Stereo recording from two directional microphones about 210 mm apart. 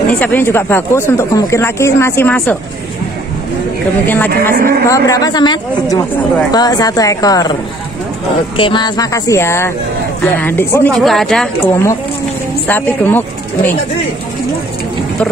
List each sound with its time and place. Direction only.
0.2 s speech: 10° left (ahead or behind)
4.0 s speech: 10° left (ahead or behind)
4.3 s speech: 45° right (ahead or behind)
4.8 s speech: 15° left (ahead or behind)
8.5 s speech: 25° left (ahead or behind)